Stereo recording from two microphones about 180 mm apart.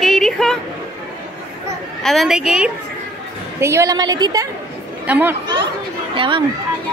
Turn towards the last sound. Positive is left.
turn(degrees=-25)  # may be behind; listen again after turning